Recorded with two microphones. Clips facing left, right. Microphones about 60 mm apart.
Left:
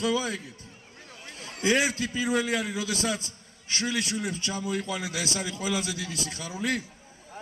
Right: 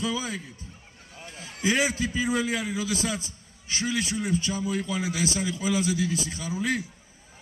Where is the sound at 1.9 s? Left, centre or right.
Right.